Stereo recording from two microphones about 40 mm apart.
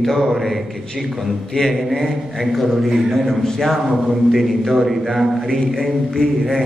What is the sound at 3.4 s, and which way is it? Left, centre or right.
Speech, centre.